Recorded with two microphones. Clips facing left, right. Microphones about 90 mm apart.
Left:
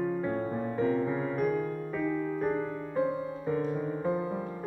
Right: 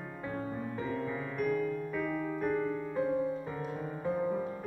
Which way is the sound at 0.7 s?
20° left (ahead or behind).